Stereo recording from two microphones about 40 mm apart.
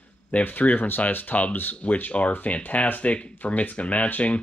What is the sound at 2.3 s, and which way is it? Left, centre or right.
Speech, left.